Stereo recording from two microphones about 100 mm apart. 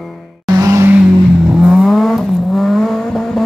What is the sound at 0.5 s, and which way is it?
Vehicle, 35° right (ahead or behind).